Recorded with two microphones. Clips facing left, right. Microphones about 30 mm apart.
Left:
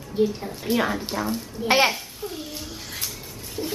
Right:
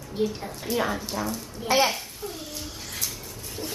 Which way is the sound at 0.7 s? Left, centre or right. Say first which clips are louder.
Left 2 dB; centre.